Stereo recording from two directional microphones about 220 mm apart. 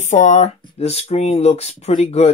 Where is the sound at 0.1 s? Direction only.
35° left (ahead or behind).